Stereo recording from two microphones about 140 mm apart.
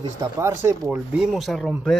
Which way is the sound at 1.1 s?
Centre (ahead or behind).